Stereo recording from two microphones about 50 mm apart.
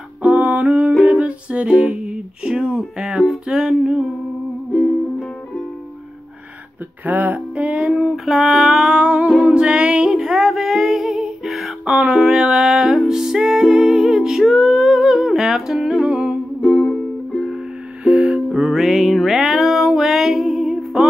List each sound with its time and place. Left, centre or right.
0.2 s music: right; by 4.0 s centre
7.1 s music: right
8.3 s mantra: centre
9.4 s music: centre
16.6 s music: centre
18.0 s music: right
18.6 s music: centre